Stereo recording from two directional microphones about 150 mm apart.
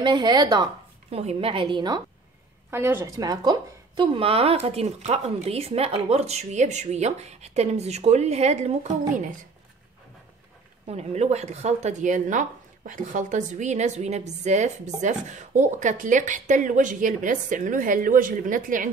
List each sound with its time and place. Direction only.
0.0 s speech: 30° right (ahead or behind)
1.1 s a woman's voice: 40° right (ahead or behind)
2.7 s a woman's voice: 15° right (ahead or behind); by 9.5 s 60° right (ahead or behind)
10.9 s speech: 45° right (ahead or behind); by 18.9 s 65° right (ahead or behind)